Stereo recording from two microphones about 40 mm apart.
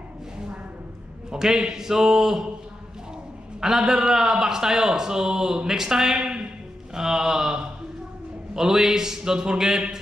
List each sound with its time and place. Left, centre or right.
1.3 s a man's voice: centre
3.6 s a man's voice: centre
6.9 s a sound: centre
8.5 s a man's voice: centre